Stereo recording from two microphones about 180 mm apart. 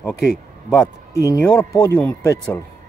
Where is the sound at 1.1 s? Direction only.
15° left (ahead or behind).